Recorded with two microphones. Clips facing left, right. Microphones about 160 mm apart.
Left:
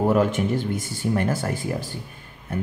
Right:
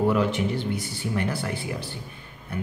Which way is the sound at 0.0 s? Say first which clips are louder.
Left 2 dB; 45° left (ahead or behind).